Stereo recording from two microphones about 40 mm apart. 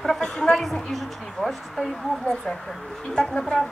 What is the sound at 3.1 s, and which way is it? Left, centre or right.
Speech, centre.